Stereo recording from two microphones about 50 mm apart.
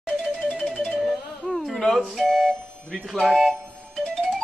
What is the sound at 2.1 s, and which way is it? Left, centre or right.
Speech, centre.